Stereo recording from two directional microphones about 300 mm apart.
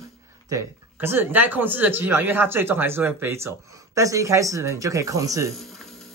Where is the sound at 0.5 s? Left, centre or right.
Centre.